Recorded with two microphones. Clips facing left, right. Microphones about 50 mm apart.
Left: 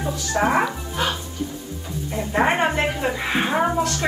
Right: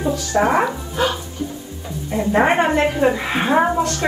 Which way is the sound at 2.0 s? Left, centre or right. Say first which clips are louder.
Right 4 dB; centre.